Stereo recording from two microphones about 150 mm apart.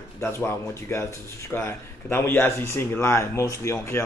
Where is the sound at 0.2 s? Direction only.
15° left (ahead or behind).